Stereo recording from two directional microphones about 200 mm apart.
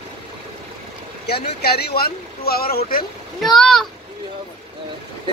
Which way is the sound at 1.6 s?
50° left (ahead or behind).